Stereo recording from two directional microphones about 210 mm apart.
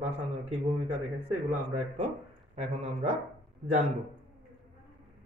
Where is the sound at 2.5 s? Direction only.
30° right (ahead or behind).